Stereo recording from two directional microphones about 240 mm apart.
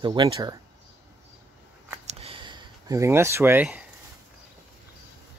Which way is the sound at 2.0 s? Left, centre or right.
Right.